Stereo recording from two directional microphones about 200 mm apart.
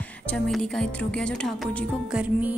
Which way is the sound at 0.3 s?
5° left (ahead or behind).